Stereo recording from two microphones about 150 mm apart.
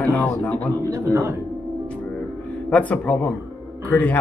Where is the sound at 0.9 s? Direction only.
15° right (ahead or behind).